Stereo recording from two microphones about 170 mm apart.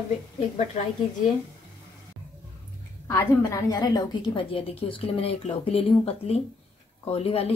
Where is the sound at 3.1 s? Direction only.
20° left (ahead or behind).